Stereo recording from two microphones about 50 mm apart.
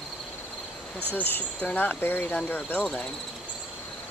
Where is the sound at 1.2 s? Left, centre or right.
Left.